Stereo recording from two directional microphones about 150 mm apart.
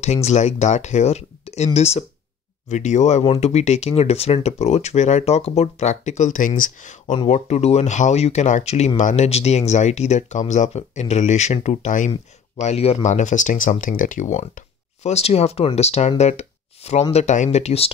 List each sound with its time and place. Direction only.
0.0 s speech: 45° left (ahead or behind)